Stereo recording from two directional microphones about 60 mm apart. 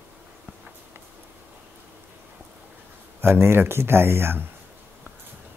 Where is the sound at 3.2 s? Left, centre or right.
Right.